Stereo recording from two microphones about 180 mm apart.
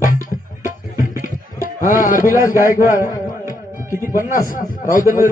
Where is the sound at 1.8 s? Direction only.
50° left (ahead or behind).